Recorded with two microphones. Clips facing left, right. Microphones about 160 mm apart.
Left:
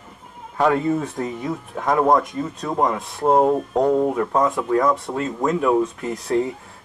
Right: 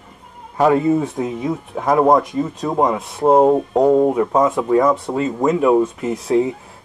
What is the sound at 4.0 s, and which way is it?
Speech, 15° right (ahead or behind).